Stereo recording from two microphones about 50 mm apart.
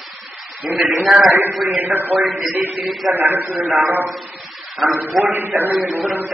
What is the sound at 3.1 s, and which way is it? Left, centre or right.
Speech, right.